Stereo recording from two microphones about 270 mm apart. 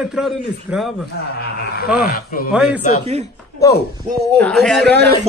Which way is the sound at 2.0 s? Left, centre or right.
Left.